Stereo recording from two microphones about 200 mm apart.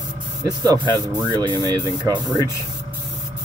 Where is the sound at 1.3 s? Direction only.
20° right (ahead or behind).